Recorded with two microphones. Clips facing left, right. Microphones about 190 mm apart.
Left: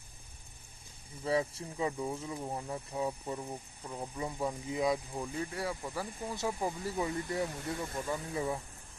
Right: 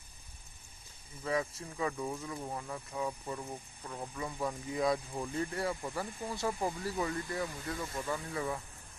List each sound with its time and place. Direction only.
1.2 s speech: 30° left (ahead or behind)
4.9 s speech: 5° left (ahead or behind); by 8.5 s 20° left (ahead or behind)